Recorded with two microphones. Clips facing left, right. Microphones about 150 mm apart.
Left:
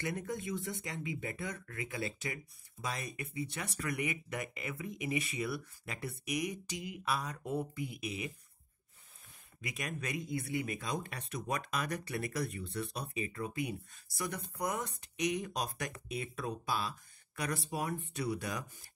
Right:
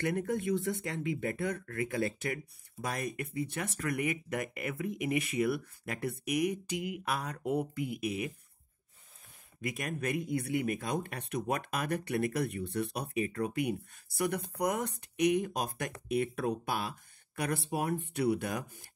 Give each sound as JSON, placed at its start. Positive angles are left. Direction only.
{"t": 0.0, "sound": "speech", "side_deg": -60}
{"t": 9.6, "sound": "speech", "side_deg": -50}